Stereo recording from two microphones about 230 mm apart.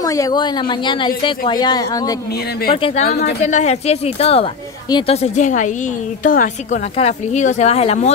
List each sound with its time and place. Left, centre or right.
0.0 s a woman's voice: centre
3.1 s a woman's voice: left